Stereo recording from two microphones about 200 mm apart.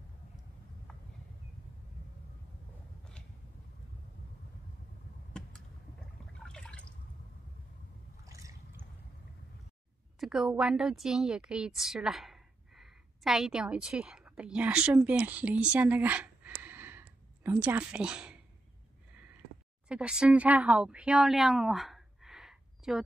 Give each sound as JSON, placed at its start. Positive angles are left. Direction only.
{"t": 6.4, "sound": "drip", "side_deg": 5}
{"t": 8.3, "sound": "boat", "side_deg": -15}
{"t": 10.2, "sound": "a woman's voice", "side_deg": 0}
{"t": 19.9, "sound": "a woman's voice", "side_deg": -5}